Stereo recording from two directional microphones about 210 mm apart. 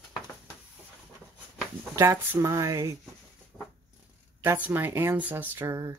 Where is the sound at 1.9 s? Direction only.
10° right (ahead or behind).